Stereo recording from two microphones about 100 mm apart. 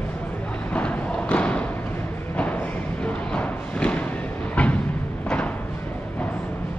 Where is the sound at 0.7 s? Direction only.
15° left (ahead or behind).